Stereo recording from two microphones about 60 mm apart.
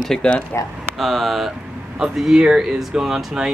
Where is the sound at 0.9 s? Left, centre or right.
Centre.